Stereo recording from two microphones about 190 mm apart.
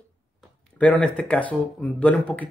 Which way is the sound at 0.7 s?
5° left (ahead or behind).